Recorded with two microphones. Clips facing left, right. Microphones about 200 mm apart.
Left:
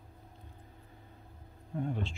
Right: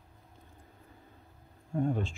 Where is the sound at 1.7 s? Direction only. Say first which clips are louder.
Right 5 dB; 50° right (ahead or behind).